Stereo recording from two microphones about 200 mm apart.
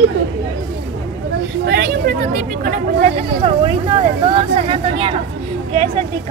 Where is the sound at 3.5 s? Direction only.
25° right (ahead or behind).